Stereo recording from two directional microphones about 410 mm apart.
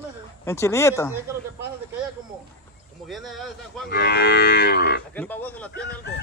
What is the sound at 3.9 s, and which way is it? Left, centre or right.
Livestock, left.